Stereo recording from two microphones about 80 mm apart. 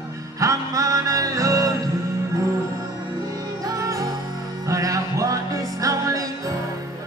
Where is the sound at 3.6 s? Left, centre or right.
Right.